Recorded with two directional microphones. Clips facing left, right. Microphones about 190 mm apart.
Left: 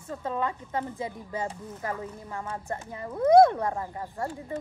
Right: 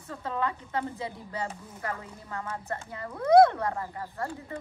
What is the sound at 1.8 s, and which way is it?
A woman's voice, 15° left (ahead or behind).